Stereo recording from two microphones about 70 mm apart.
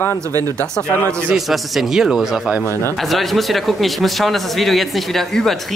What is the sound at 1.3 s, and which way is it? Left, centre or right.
Speech, centre.